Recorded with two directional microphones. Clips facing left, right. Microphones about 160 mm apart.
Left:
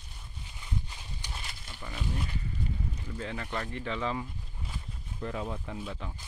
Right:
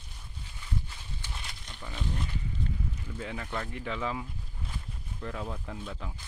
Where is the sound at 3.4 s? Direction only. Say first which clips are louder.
Even; 15° left (ahead or behind).